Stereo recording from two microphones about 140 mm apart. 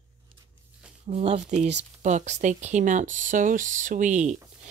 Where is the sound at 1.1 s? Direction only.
50° right (ahead or behind).